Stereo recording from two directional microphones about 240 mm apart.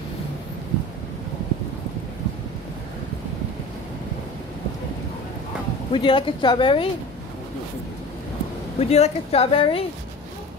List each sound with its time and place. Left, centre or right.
5.9 s speech: left
8.7 s speech: left